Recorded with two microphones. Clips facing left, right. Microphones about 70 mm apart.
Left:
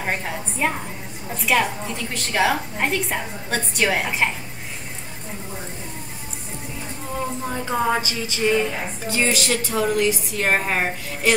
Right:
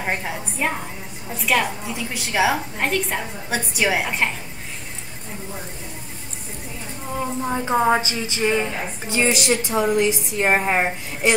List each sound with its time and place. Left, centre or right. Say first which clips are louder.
0.0 s a woman's voice: even; centre
7.4 s a woman's voice: right 4 dB; centre